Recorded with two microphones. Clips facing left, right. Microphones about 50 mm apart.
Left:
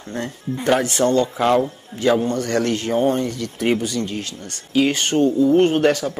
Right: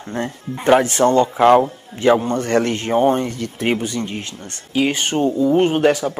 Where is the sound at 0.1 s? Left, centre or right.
Right.